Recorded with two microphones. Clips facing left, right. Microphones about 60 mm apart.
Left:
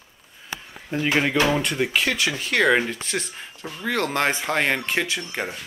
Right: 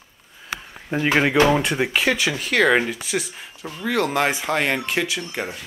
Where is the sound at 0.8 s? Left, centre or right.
Right; by 2.5 s centre.